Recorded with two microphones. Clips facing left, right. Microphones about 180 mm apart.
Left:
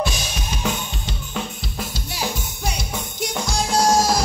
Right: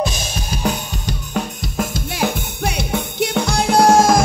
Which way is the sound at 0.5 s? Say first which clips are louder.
Right 4 dB; 40° right (ahead or behind).